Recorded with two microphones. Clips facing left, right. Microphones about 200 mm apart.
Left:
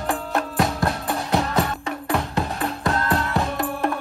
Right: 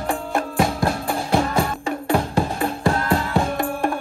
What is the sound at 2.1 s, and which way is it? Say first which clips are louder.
Music: right 4 dB; 30° right (ahead or behind).